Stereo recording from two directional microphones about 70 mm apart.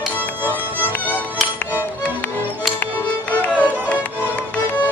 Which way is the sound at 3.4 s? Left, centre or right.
Left.